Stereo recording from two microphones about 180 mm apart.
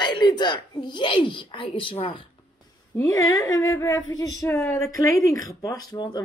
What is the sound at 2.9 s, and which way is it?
Speech, 15° left (ahead or behind).